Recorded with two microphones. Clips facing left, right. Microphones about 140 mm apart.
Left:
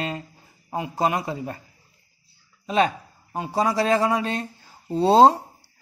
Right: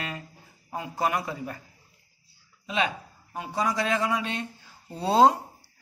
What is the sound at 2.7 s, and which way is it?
A man's voice, 40° left (ahead or behind).